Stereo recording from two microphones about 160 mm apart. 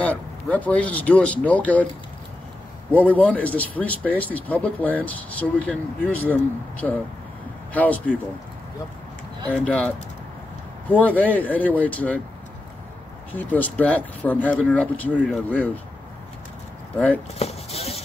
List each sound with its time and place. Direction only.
0.0 s speech: 10° left (ahead or behind)
3.1 s speech: 10° left (ahead or behind)
9.7 s speech: 5° left (ahead or behind)
13.3 s speech: 10° left (ahead or behind)
17.4 s a sound: 40° left (ahead or behind)